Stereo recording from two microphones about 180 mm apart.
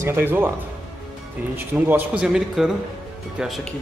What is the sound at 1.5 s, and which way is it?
Speech, 10° right (ahead or behind).